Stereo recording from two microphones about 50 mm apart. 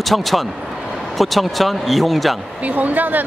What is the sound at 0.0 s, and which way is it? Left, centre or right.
Speech, centre.